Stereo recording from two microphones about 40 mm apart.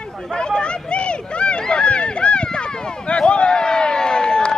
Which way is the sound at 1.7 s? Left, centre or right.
Left.